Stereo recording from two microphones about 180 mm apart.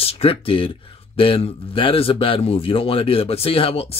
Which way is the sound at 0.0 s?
35° left (ahead or behind).